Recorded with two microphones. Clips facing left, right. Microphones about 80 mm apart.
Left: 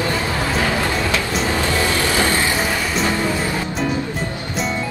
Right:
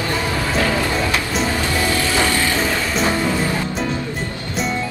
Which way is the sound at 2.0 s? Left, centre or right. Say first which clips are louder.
Even; left.